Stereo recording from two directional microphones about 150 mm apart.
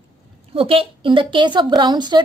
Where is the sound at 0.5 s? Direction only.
40° right (ahead or behind).